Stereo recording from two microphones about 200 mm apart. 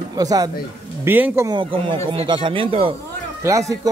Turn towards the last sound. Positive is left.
turn(degrees=-15)  # may be behind; listen again after turning